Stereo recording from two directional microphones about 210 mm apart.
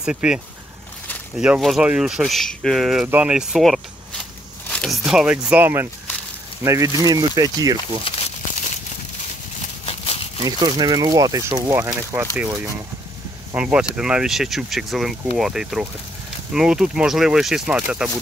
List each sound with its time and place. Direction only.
0.0 s speech: 5° right (ahead or behind)
1.4 s speech: 5° right (ahead or behind); by 8.0 s 20° right (ahead or behind)
8.0 s crumpling: 30° left (ahead or behind)
9.8 s a sound: 30° left (ahead or behind)
10.4 s speech: 20° right (ahead or behind)
13.5 s speech: 5° right (ahead or behind)